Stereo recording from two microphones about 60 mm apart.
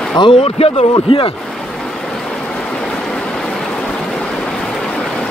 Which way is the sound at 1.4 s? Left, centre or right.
Centre.